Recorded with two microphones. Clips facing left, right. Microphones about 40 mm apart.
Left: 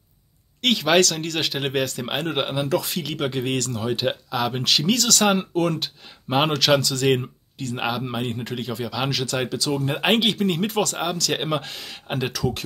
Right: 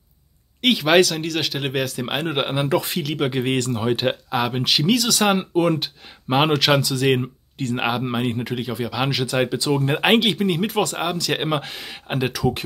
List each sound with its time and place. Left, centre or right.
0.6 s speech: centre
2.5 s speech: right
3.0 s speech: centre
3.3 s speech: right
4.1 s speech: centre
7.7 s speech: right